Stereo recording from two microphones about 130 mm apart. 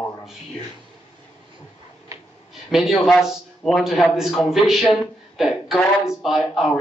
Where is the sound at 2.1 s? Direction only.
25° right (ahead or behind).